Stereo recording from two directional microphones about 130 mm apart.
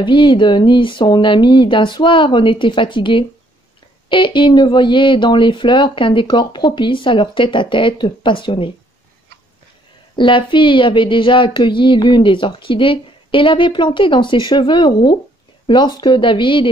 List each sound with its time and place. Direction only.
0.0 s speech: 40° left (ahead or behind)
10.1 s speech: 40° left (ahead or behind)